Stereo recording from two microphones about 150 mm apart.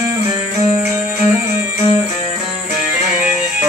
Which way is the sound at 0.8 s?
15° right (ahead or behind).